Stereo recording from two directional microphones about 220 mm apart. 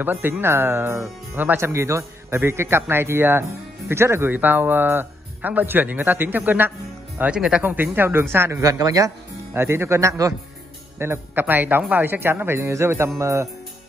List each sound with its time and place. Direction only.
0.0 s speech: 10° right (ahead or behind)